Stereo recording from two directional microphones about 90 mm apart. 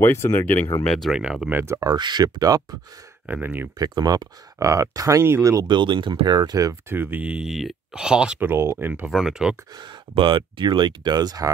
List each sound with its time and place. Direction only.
0.0 s speech: 25° left (ahead or behind)
0.8 s speech: 5° left (ahead or behind)
1.1 s speech: 5° right (ahead or behind)
1.5 s speech: 25° right (ahead or behind)
1.8 s speech: 55° right (ahead or behind)
3.3 s speech: 20° right (ahead or behind)
3.7 s speech: 45° right (ahead or behind)
5.7 s speech: 60° right (ahead or behind); by 6.8 s 40° right (ahead or behind)
6.9 s speech: 20° right (ahead or behind)
8.4 s speech: 25° right (ahead or behind)
9.1 s speech: 5° right (ahead or behind)
9.8 s speech: 60° right (ahead or behind)